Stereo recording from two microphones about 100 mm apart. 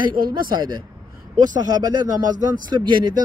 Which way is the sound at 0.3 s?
45° right (ahead or behind).